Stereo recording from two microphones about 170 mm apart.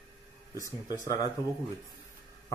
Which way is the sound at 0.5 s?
20° left (ahead or behind).